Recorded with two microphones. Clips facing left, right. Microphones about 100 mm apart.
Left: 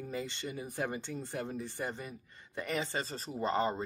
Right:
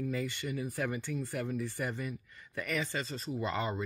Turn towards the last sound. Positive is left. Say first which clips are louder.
# left 2 dB
turn(degrees=35)  # may be behind; listen again after turning